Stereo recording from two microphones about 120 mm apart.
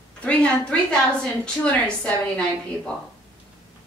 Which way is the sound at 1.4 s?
10° left (ahead or behind).